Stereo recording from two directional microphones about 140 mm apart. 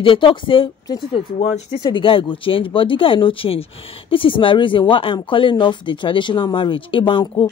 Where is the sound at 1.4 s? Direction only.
50° left (ahead or behind).